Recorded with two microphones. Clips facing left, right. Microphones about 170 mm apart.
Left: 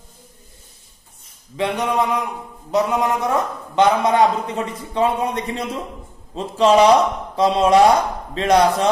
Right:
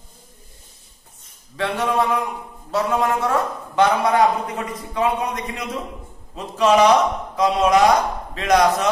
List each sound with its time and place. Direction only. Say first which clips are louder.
1.6 s a man's voice: left 1 dB; 20° left (ahead or behind)